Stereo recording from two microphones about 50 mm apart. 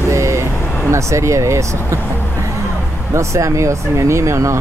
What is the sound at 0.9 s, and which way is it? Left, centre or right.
Speech, right.